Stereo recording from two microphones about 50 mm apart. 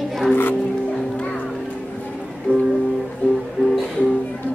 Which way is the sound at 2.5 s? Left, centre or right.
Right.